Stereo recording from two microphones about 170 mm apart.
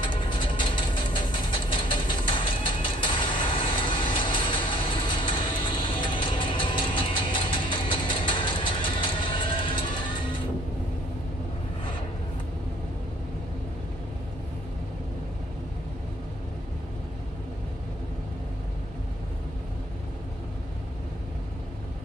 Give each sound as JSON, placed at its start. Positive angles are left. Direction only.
{"t": 0.0, "sound": "vehicle", "side_deg": 30}